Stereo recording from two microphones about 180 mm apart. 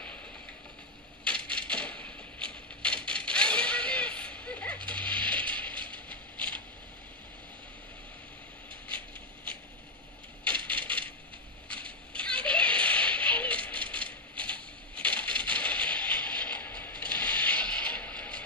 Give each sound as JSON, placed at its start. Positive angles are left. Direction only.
{"t": 1.2, "sound": "a sound", "side_deg": 5}
{"t": 4.8, "sound": "mechanisms", "side_deg": 5}
{"t": 5.4, "sound": "ratchet", "side_deg": -25}
{"t": 10.4, "sound": "wood", "side_deg": 5}
{"t": 11.7, "sound": "music", "side_deg": 5}
{"t": 15.4, "sound": "a sound", "side_deg": 5}